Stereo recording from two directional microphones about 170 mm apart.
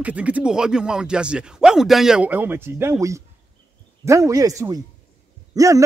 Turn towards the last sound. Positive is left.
turn(degrees=-20)  # may be behind; listen again after turning